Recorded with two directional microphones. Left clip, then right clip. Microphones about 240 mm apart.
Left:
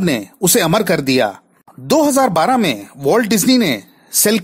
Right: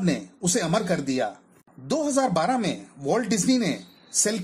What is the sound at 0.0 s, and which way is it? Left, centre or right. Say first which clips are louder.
Speech: left 10 dB; left.